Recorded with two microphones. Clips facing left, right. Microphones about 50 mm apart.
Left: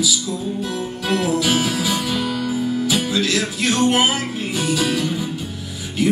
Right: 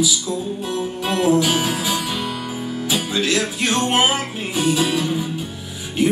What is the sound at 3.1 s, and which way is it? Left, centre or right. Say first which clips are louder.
Music: even; right.